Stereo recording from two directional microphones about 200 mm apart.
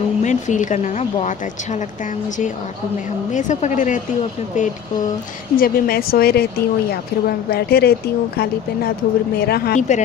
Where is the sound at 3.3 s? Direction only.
35° left (ahead or behind).